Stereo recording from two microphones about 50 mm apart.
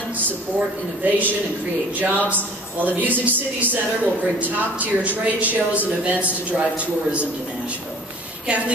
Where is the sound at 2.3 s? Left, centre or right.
Right.